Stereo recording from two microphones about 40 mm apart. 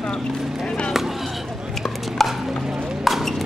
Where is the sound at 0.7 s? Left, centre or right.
Left.